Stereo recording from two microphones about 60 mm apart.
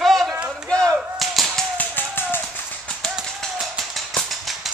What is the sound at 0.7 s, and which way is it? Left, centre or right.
Whip, centre.